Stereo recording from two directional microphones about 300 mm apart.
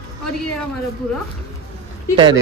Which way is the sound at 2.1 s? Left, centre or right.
Centre.